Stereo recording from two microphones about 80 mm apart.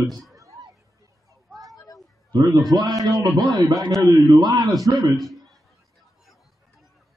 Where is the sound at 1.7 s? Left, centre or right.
Left.